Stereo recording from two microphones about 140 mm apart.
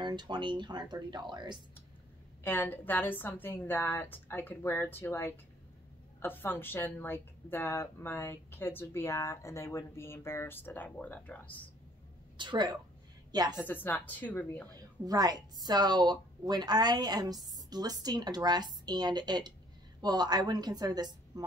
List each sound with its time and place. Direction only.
0.0 s speech: 35° right (ahead or behind)
2.4 s a woman's voice: 15° left (ahead or behind)
12.4 s a woman's voice: 30° right (ahead or behind)
13.6 s a woman's voice: 10° left (ahead or behind)
15.0 s a woman's voice: 30° right (ahead or behind)